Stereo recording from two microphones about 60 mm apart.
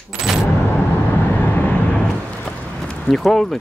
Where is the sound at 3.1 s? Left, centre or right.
Centre.